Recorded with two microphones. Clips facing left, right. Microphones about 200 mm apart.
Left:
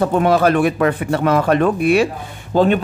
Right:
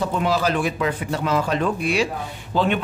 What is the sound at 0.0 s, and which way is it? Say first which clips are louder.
Speech: left 7 dB; 55° left (ahead or behind).